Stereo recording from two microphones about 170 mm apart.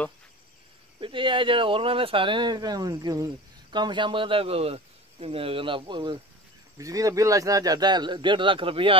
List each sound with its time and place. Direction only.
1.0 s speech: 30° right (ahead or behind)